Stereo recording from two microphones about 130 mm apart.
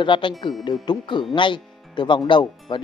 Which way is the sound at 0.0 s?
40° left (ahead or behind).